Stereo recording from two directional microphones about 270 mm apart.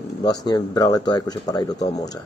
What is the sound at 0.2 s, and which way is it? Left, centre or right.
A man's voice, centre.